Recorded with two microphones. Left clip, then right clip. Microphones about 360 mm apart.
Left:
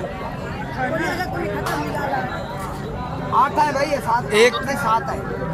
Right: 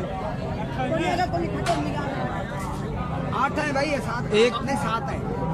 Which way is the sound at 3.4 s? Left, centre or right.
Centre.